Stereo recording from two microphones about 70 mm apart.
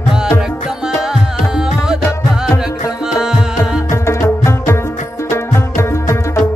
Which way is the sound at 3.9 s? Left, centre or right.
Left.